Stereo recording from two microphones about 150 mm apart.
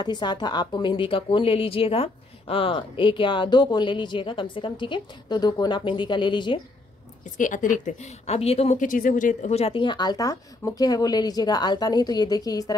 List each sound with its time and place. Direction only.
0.0 s a woman's voice: 30° left (ahead or behind)
7.3 s a woman's voice: 60° left (ahead or behind); by 12.7 s 25° left (ahead or behind)